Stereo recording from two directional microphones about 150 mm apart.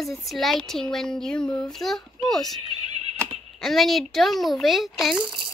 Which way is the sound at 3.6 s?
Centre (ahead or behind).